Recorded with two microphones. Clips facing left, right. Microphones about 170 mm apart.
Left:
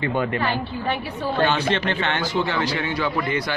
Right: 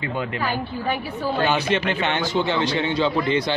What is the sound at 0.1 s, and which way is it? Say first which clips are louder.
Speech: left 2 dB; 50° left (ahead or behind).